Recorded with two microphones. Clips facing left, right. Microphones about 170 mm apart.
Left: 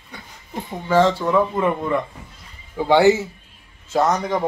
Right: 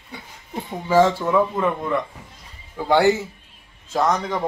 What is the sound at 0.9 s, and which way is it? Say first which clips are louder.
A man's voice: even; 5° right (ahead or behind).